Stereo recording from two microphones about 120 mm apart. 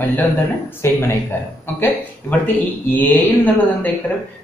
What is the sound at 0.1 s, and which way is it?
Speech, 15° left (ahead or behind).